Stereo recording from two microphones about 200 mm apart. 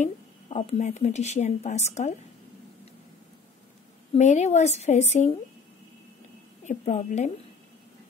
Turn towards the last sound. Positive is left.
turn(degrees=35)  # may be behind; listen again after turning